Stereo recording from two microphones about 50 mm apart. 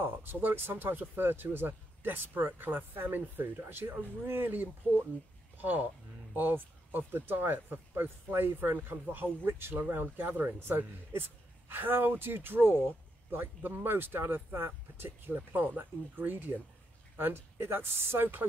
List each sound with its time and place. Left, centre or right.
0.0 s speech: right
17.2 s speech: right